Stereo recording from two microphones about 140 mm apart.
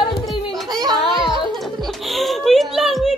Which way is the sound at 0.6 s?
30° right (ahead or behind).